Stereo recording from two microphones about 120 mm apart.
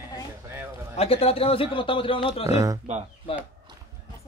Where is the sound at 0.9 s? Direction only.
55° left (ahead or behind).